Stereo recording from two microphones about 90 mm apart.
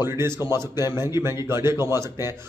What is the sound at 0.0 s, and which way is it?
A man's voice, 30° right (ahead or behind).